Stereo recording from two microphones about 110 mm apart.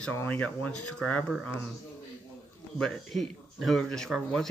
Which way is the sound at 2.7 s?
5° left (ahead or behind).